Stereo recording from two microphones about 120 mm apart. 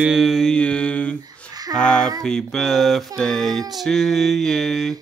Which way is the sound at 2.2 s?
5° left (ahead or behind).